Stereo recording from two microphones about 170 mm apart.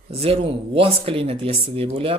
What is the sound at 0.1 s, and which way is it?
Speech, 35° right (ahead or behind).